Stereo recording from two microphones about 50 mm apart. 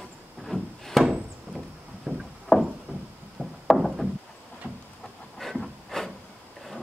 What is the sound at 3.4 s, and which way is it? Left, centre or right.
Wood, right.